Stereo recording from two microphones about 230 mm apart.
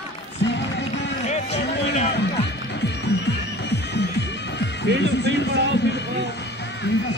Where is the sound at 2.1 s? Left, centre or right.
Left.